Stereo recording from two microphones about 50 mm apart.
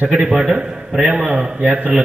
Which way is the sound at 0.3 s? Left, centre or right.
Centre.